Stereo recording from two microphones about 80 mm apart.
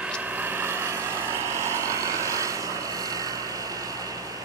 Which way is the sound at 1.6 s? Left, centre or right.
Right.